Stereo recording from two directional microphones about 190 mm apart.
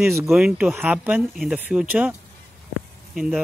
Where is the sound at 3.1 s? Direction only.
Centre (ahead or behind).